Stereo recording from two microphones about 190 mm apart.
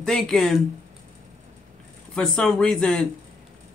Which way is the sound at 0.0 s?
Centre (ahead or behind).